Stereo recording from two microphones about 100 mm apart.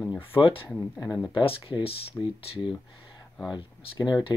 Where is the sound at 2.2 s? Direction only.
20° left (ahead or behind).